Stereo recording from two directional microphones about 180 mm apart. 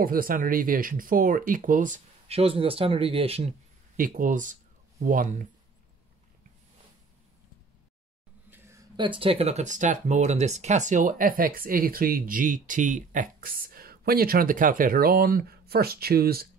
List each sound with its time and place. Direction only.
0.0 s speech: 55° right (ahead or behind); by 3.5 s 35° right (ahead or behind)
3.9 s speech: 50° right (ahead or behind)
8.5 s speech: 15° right (ahead or behind); by 16.4 s 60° right (ahead or behind)